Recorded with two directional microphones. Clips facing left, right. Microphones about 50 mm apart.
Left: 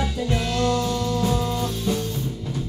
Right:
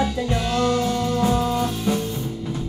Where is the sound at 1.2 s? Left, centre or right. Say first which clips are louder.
Right 3 dB; right.